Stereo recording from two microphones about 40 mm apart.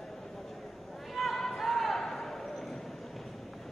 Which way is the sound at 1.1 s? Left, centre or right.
Centre.